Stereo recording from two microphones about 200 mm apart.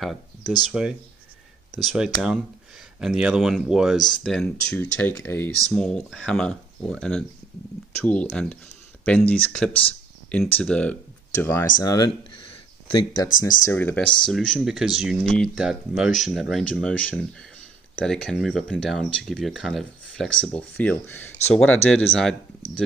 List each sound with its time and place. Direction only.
0.0 s speech: centre (ahead or behind)